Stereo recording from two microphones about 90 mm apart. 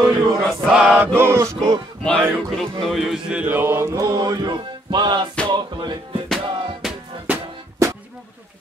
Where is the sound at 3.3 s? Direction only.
15° right (ahead or behind).